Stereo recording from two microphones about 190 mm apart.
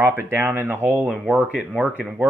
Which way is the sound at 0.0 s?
10° right (ahead or behind).